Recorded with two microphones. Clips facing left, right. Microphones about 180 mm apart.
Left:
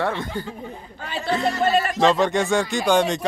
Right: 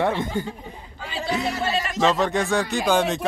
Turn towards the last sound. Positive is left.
turn(degrees=0)  # may be behind; listen again after turning